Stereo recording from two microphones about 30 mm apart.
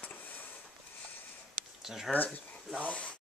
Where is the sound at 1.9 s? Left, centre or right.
Centre.